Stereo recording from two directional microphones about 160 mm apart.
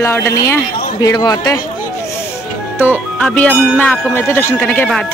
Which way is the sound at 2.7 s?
10° left (ahead or behind).